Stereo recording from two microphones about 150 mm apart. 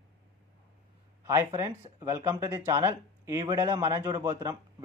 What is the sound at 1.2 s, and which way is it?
A man's voice, 20° right (ahead or behind).